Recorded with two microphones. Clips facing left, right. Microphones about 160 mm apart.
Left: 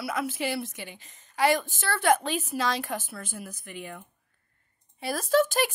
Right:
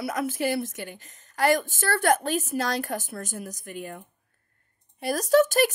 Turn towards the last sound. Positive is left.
turn(degrees=-45)  # may be behind; listen again after turning